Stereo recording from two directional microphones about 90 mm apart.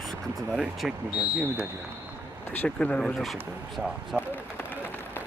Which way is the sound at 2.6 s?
15° left (ahead or behind).